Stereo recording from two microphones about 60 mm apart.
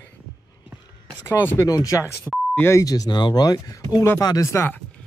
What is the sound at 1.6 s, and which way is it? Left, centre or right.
Speech, left.